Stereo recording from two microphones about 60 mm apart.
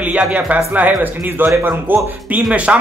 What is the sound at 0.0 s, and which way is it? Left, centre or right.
Speech, right.